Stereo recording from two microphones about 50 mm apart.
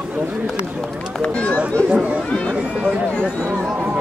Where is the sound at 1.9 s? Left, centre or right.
Right.